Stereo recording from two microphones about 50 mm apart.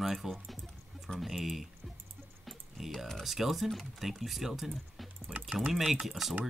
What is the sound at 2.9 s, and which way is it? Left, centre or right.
Speech, centre.